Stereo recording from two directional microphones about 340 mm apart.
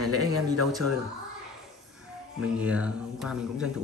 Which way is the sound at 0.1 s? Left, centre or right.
Left.